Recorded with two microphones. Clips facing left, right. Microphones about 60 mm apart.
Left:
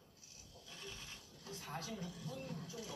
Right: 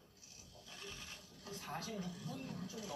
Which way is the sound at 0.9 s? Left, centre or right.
Right.